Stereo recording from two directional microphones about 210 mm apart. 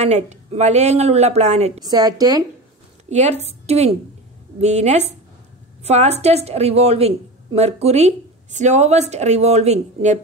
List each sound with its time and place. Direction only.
0.0 s speech: 30° right (ahead or behind)
1.9 s a woman's voice: 20° right (ahead or behind)
3.1 s a woman's voice: 30° right (ahead or behind)